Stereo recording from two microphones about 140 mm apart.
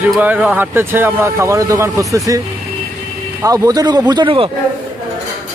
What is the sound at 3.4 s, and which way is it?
Speech, 25° right (ahead or behind).